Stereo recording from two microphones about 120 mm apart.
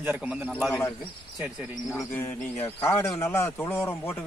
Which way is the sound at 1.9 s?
25° left (ahead or behind).